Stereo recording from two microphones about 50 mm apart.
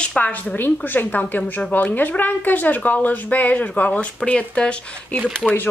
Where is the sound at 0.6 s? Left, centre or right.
Left.